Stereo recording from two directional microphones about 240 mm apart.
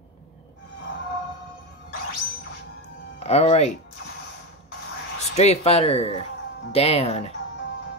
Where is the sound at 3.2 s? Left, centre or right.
Left.